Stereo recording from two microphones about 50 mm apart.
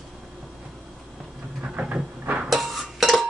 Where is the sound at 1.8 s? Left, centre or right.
Right.